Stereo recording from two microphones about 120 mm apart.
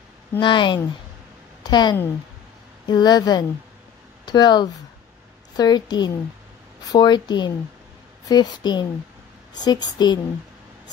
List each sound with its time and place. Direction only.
0.4 s a woman's voice: 40° left (ahead or behind)